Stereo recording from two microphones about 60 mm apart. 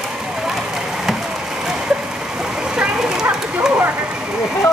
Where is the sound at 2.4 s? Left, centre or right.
Centre.